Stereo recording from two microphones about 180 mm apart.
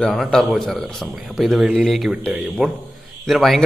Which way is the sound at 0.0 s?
Centre (ahead or behind).